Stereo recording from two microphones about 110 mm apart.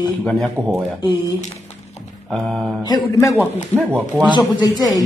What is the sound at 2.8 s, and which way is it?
Speech, 35° left (ahead or behind).